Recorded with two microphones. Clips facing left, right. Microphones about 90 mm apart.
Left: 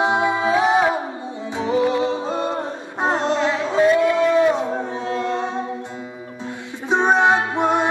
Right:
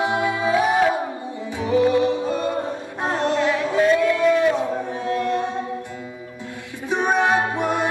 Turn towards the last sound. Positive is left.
turn(degrees=20)  # may be behind; listen again after turning